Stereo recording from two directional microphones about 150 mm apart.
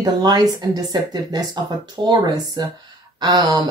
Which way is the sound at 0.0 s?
30° right (ahead or behind).